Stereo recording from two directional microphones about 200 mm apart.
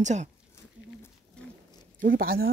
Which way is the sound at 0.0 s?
35° right (ahead or behind).